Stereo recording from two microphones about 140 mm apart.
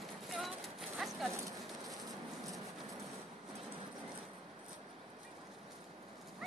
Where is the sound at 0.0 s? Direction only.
Centre (ahead or behind).